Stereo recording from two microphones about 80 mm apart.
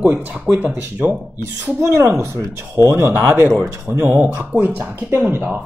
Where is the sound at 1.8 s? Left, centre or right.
Right.